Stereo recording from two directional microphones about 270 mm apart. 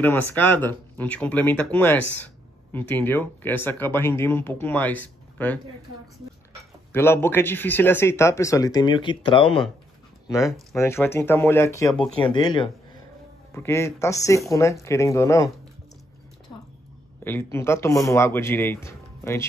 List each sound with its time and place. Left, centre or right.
0.0 s speech: centre
6.9 s speech: centre
17.2 s speech: centre